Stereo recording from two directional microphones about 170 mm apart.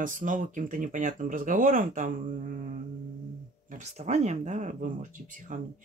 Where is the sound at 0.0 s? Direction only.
50° right (ahead or behind).